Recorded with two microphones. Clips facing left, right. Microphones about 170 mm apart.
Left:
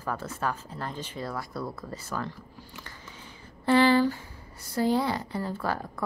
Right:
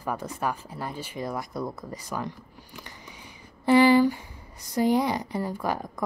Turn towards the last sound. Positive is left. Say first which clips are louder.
# right 2 dB
turn(degrees=-15)  # may be behind; listen again after turning